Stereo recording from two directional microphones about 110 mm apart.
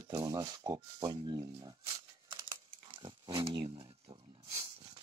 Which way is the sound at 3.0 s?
45° right (ahead or behind).